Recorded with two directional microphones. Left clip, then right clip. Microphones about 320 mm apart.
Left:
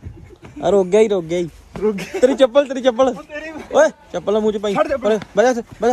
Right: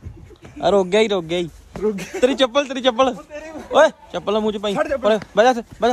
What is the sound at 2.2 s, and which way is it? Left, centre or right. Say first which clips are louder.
Speech: left 4 dB; centre.